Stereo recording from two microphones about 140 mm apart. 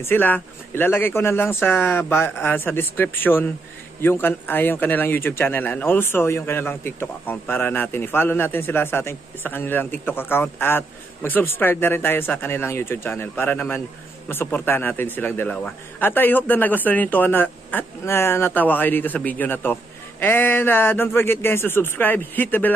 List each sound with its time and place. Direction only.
0.0 s a man's voice: 15° left (ahead or behind)